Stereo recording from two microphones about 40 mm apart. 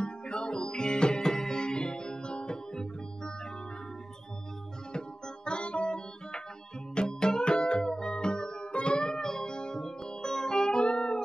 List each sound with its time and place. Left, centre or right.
0.0 s music: left
4.9 s music: left